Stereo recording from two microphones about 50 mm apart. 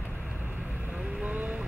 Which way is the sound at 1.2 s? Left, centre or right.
Right.